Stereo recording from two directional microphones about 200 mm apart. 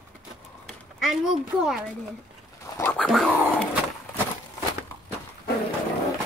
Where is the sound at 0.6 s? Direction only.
Centre (ahead or behind).